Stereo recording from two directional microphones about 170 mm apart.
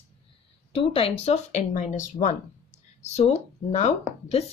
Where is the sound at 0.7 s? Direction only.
35° left (ahead or behind).